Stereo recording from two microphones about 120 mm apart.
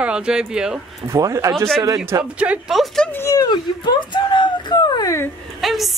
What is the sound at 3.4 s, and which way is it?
Speech, 35° left (ahead or behind).